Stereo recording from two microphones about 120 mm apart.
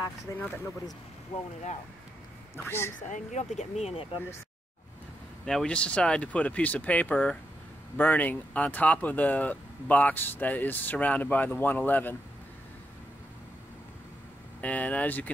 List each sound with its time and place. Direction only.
1.3 s speech: 80° left
2.5 s speech: 20° left (ahead or behind)
3.1 s speech: 80° left; by 4.2 s 50° left (ahead or behind)
5.4 s speech: 5° left (ahead or behind)
14.6 s speech: 10° left (ahead or behind)